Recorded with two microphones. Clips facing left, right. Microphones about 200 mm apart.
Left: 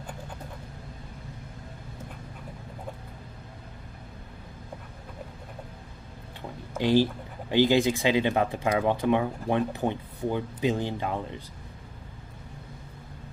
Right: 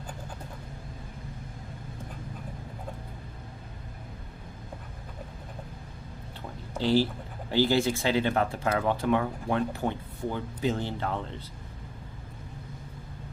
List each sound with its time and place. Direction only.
6.8 s speech: 15° left (ahead or behind)